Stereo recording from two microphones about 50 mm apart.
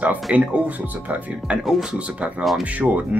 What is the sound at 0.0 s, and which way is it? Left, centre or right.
Speech, right.